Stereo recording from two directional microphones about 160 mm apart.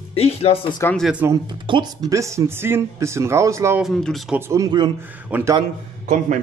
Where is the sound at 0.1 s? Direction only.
40° left (ahead or behind).